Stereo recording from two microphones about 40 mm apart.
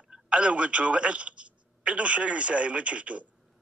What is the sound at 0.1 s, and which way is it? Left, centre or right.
Speech, right.